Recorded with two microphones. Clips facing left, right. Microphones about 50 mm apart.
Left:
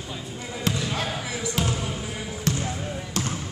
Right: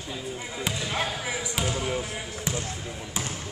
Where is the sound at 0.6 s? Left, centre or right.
Centre.